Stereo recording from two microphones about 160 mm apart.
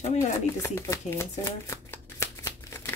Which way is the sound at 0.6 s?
15° left (ahead or behind).